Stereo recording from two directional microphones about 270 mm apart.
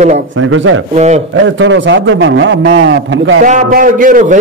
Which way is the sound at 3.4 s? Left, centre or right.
Right.